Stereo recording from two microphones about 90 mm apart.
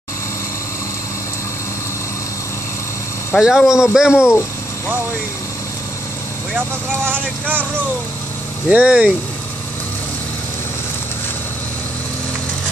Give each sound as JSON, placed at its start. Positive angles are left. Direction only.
{"t": 3.3, "sound": "speech", "side_deg": -5}
{"t": 6.5, "sound": "speech", "side_deg": -25}
{"t": 8.6, "sound": "speech", "side_deg": -10}